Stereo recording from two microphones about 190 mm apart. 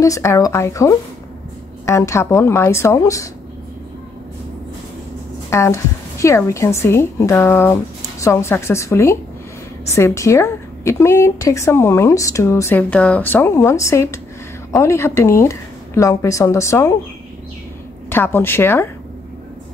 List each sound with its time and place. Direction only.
0.0 s a woman's voice: 15° left (ahead or behind)
5.5 s a woman's voice: 15° left (ahead or behind)
18.1 s a woman's voice: 10° left (ahead or behind)